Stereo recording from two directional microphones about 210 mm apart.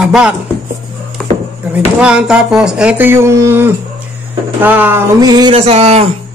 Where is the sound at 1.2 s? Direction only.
Centre (ahead or behind).